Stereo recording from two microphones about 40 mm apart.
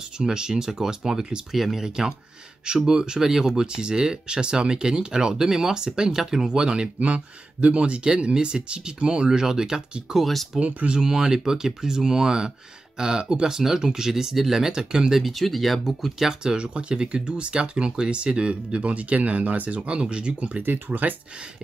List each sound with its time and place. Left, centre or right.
0.2 s speech: centre
1.9 s speech: centre
10.1 s speech: centre
10.6 s speech: right
11.0 s speech: centre
15.2 s speech: centre
16.2 s speech: centre; by 19.8 s right
19.8 s speech: right
20.6 s speech: right